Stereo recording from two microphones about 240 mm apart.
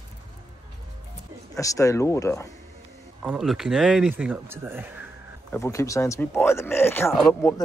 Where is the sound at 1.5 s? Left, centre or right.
Centre.